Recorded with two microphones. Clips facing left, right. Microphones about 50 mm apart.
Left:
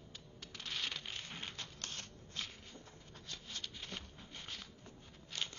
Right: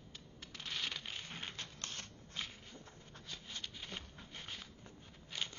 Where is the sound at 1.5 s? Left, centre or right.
Right.